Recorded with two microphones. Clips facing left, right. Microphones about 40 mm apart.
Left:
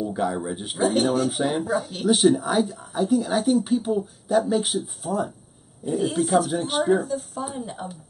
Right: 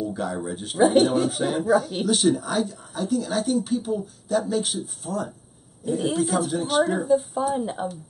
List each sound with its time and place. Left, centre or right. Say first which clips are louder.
0.0 s speech: left 2 dB; centre
0.7 s speech: right 3 dB; centre
1.3 s speech: right 3 dB; centre
6.1 s speech: left 2 dB; centre
7.1 s speech: right 8 dB; centre